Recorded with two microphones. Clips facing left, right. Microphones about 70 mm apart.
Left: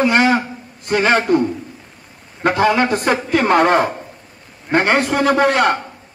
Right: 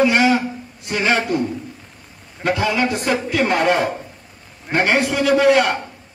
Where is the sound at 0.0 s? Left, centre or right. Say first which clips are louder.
Left 1 dB; left.